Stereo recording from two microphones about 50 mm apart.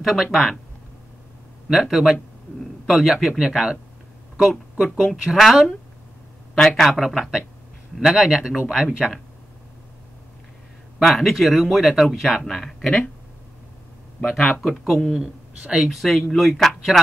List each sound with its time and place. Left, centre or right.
0.0 s speech: centre
1.7 s speech: centre
6.5 s speech: centre
7.2 s speech: centre
11.0 s speech: centre
14.6 s speech: centre
15.6 s speech: centre
15.9 s speech: centre